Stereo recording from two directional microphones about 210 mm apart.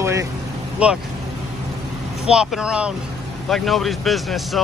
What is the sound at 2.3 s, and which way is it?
Speech, 5° right (ahead or behind).